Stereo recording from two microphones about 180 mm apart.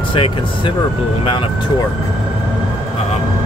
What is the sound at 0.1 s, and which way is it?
Speech, 30° left (ahead or behind).